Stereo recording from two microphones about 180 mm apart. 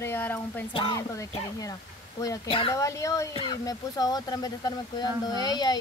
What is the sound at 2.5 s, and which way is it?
Speech, 30° left (ahead or behind).